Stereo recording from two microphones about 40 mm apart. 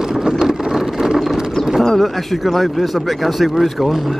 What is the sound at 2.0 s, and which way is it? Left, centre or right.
Speech, centre.